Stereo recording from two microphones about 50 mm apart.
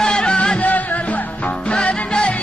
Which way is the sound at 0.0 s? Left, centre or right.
Centre.